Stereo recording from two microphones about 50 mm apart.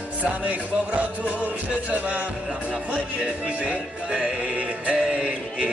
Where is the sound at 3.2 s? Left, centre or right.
Right.